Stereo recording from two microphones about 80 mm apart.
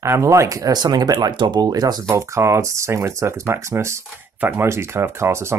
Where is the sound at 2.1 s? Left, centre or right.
Right.